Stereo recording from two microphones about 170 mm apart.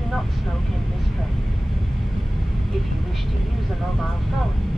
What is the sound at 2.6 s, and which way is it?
Vehicle, centre (ahead or behind).